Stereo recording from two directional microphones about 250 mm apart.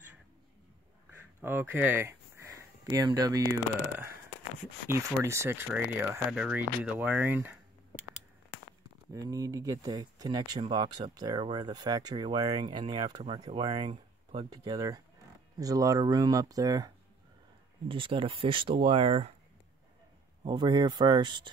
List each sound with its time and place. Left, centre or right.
1.4 s speech: centre
4.8 s speech: centre
9.1 s speech: centre
20.4 s speech: centre